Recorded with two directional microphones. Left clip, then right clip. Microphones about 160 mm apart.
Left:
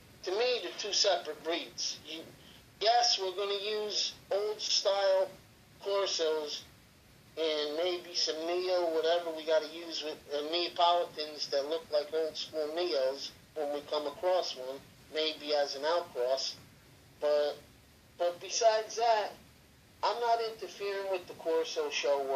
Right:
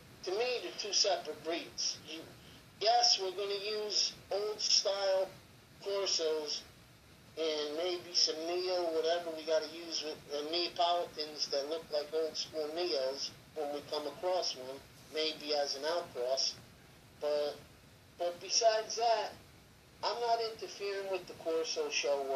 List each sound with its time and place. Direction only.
0.2 s a man's voice: 5° right (ahead or behind)